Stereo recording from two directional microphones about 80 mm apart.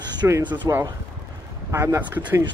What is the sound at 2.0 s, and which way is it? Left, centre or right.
Speech, right.